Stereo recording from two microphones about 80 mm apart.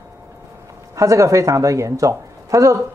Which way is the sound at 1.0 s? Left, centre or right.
Right.